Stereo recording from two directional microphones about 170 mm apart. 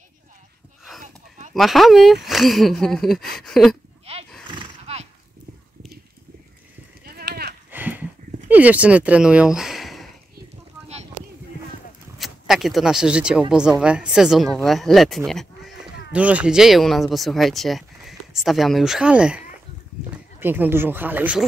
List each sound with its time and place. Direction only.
1.5 s speech: centre (ahead or behind)
4.0 s horse: 35° right (ahead or behind)
7.1 s sheep: 60° right (ahead or behind)
7.7 s a sound: 10° right (ahead or behind)
8.5 s speech: 10° right (ahead or behind)
12.2 s speech: centre (ahead or behind)